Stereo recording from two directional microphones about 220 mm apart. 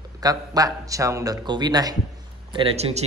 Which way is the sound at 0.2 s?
15° right (ahead or behind).